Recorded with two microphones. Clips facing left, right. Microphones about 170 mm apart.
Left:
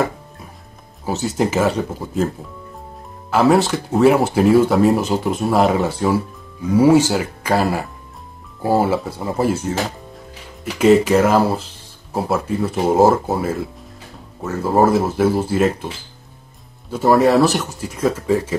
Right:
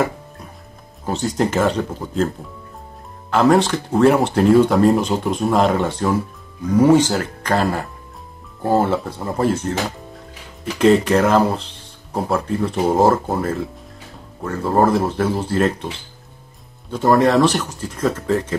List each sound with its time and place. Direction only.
1.0 s speech: 5° left (ahead or behind)
3.3 s speech: 5° left (ahead or behind)
16.9 s speech: 5° left (ahead or behind)